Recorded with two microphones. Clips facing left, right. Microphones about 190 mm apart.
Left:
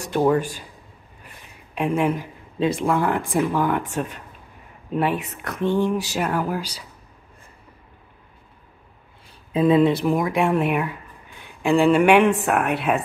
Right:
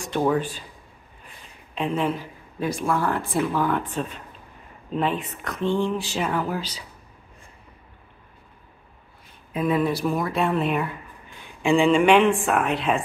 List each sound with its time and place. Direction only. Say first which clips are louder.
0.1 s speech: left 3 dB; 10° left (ahead or behind)
1.8 s speech: left 3 dB; 10° left (ahead or behind)
9.5 s speech: left 6 dB; 25° left (ahead or behind); by 13.0 s 5° left (ahead or behind)